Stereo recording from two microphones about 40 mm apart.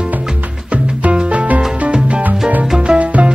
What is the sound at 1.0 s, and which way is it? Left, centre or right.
Music, right.